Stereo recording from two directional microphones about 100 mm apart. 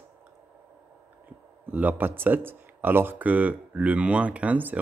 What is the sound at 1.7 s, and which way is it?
Speech, 15° right (ahead or behind).